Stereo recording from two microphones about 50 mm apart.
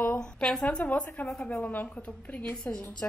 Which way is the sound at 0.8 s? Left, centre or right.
Left.